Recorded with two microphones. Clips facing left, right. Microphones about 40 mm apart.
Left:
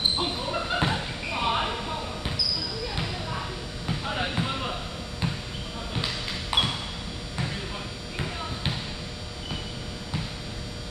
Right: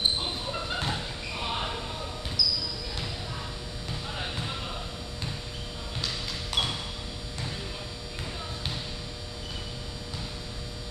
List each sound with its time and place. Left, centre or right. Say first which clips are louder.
0.2 s basketball bounce: left 4 dB; left
3.0 s a sound: left 4 dB; left
5.9 s music: left 3 dB; left